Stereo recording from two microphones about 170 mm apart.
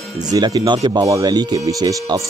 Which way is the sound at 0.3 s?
25° right (ahead or behind).